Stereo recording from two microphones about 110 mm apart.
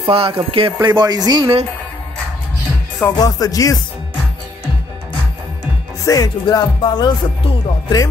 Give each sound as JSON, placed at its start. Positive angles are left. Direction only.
{"t": 0.0, "sound": "speech", "side_deg": -60}
{"t": 0.7, "sound": "speech", "side_deg": -40}
{"t": 3.2, "sound": "speech", "side_deg": 35}
{"t": 6.0, "sound": "speech", "side_deg": 30}
{"t": 6.8, "sound": "speech", "side_deg": 45}